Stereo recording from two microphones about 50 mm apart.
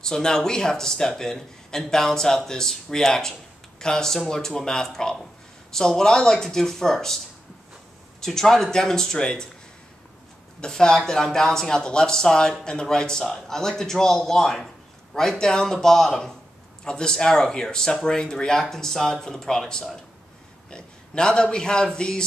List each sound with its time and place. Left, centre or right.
0.0 s speech: centre
8.2 s speech: centre
10.6 s speech: centre
20.7 s speech: centre